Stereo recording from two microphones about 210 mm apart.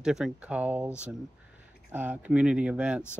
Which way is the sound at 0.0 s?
5° right (ahead or behind).